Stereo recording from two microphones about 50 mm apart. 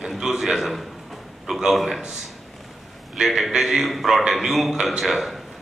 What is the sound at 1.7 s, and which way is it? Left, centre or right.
Speech, centre.